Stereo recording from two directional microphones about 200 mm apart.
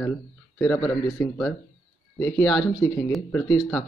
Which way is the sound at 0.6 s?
10° left (ahead or behind).